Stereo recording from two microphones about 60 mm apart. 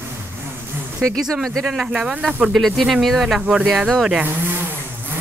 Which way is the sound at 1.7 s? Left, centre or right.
Centre.